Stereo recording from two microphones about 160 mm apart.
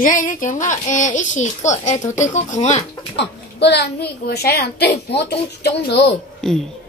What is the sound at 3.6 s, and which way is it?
A child's voice, 90° left.